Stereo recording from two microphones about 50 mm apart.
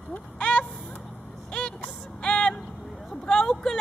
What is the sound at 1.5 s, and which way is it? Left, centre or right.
Vehicle, left.